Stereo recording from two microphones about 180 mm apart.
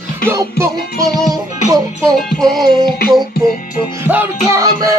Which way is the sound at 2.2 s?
Centre (ahead or behind).